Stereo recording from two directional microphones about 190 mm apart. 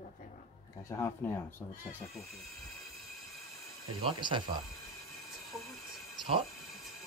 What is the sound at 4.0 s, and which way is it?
Speech, 25° right (ahead or behind).